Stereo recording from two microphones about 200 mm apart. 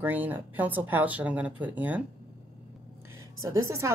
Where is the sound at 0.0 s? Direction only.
10° right (ahead or behind).